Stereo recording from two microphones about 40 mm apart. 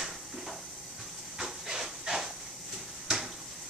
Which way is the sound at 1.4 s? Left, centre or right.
Centre.